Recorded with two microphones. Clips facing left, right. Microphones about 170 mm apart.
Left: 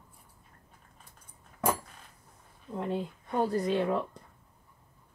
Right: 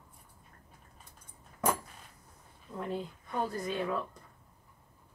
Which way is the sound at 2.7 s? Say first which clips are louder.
Left 4 dB; 25° left (ahead or behind).